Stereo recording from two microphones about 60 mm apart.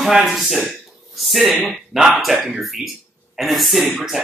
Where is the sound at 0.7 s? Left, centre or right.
Centre.